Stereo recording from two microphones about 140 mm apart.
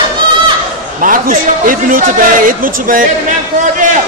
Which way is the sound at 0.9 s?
75° right (ahead or behind).